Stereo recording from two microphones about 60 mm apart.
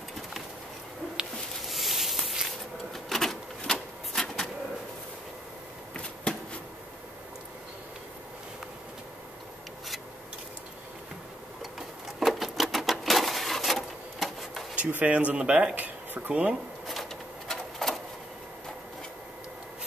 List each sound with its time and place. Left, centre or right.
1.3 s a sound: centre
2.9 s typewriter: centre
4.1 s bird: centre
12.2 s printer: centre
14.8 s speech: right
16.8 s a sound: centre